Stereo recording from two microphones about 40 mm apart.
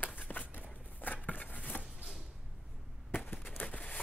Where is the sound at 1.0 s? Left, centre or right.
Left.